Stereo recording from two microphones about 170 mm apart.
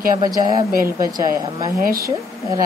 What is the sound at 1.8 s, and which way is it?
Speech, 60° right (ahead or behind).